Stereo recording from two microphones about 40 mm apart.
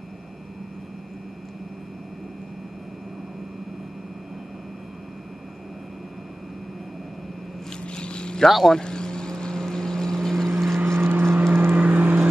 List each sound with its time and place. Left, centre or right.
7.8 s vehicle: left
8.5 s speech: centre
8.7 s vehicle: left
10.9 s vehicle: right